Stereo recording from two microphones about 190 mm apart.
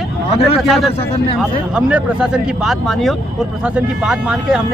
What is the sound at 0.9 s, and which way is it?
Speech, 30° left (ahead or behind).